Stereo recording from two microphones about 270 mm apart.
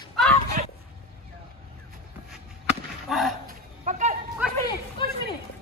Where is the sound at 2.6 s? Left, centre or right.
Centre.